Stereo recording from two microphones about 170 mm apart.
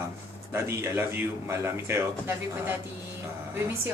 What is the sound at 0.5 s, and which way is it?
Speech, 15° right (ahead or behind).